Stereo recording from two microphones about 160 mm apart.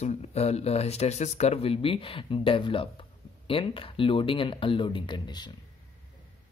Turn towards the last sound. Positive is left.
turn(degrees=25)  # may be behind; listen again after turning